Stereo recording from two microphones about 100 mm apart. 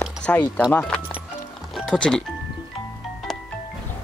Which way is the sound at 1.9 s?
10° left (ahead or behind).